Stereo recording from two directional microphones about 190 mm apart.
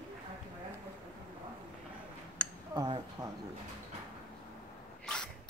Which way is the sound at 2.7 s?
20° right (ahead or behind).